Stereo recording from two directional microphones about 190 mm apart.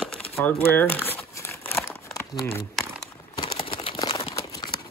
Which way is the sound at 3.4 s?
20° left (ahead or behind).